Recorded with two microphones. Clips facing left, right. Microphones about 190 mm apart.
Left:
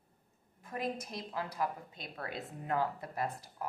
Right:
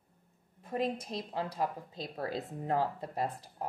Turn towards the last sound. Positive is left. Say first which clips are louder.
# right 2 dB
turn(degrees=-30)  # may be behind; listen again after turning